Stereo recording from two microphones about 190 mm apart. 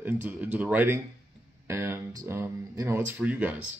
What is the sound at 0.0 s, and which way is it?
Speech, 10° right (ahead or behind).